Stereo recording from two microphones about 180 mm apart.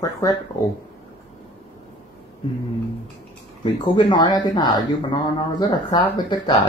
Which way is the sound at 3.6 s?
25° left (ahead or behind).